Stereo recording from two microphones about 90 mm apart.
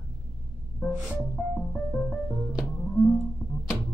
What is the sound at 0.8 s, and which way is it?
Music, 15° left (ahead or behind).